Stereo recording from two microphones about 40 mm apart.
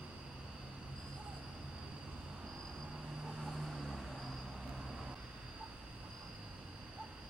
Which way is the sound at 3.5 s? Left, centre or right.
Centre.